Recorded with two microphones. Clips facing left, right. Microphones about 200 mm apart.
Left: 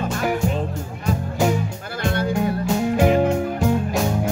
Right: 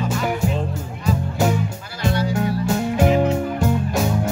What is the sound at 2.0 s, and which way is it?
Music, 55° left (ahead or behind).